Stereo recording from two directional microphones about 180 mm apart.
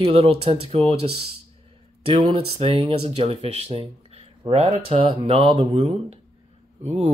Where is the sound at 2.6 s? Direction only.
30° right (ahead or behind).